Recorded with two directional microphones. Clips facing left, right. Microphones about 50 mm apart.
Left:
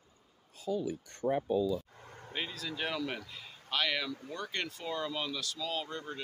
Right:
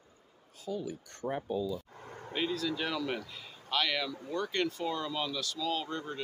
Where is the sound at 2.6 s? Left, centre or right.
Left.